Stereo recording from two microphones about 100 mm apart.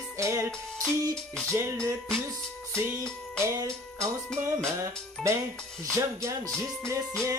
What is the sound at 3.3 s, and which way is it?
Music, 30° right (ahead or behind).